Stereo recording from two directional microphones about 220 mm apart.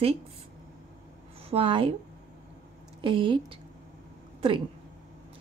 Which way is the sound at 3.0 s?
25° right (ahead or behind).